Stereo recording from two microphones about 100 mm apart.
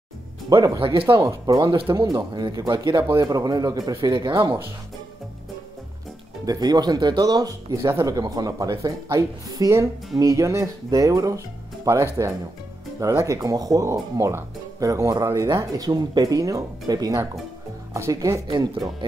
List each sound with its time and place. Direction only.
0.5 s speech: 35° right (ahead or behind)
0.7 s speech: 60° right (ahead or behind)
1.0 s speech: 30° right (ahead or behind)
1.4 s speech: 40° right (ahead or behind)
3.2 s speech: 40° right (ahead or behind)
6.4 s speech: 40° right (ahead or behind)
17.9 s speech: 30° right (ahead or behind)
18.5 s speech: 40° right (ahead or behind)